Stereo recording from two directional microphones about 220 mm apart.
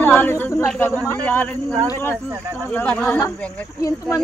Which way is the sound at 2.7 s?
5° left (ahead or behind).